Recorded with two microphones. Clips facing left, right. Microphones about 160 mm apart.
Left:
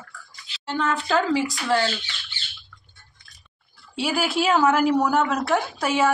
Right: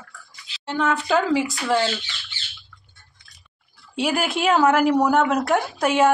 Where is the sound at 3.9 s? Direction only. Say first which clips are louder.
Right 1 dB; centre (ahead or behind).